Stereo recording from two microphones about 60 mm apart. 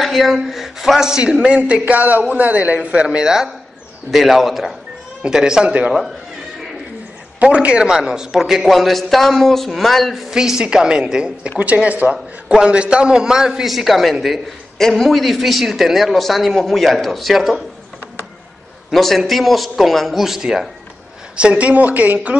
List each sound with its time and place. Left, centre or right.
0.0 s a man's voice: centre
5.2 s a man's voice: centre
7.3 s a man's voice: right; by 10.2 s centre
10.3 s a man's voice: centre
11.6 s a man's voice: right; by 17.6 s centre
18.9 s a man's voice: centre
21.4 s a man's voice: centre